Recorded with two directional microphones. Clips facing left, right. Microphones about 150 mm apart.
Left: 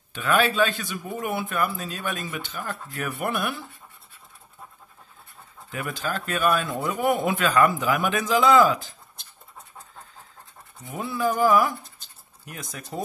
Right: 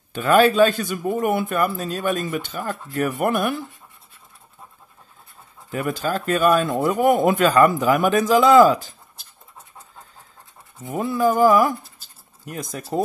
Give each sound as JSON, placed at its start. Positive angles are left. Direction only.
{"t": 0.1, "sound": "speech", "side_deg": -40}
{"t": 5.7, "sound": "speech", "side_deg": -40}
{"t": 10.8, "sound": "speech", "side_deg": -45}
{"t": 12.0, "sound": "dog", "side_deg": -5}
{"t": 12.4, "sound": "speech", "side_deg": -40}